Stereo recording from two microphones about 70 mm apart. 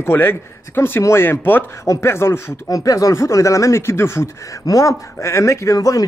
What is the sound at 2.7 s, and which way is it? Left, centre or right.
Speech, left.